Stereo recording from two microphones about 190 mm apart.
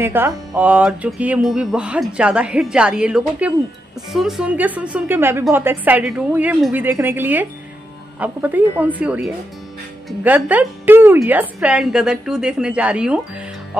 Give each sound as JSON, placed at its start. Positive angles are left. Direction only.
{"t": 0.0, "sound": "music", "side_deg": -10}
{"t": 4.1, "sound": "a woman's voice", "side_deg": 0}
{"t": 10.0, "sound": "music", "side_deg": -10}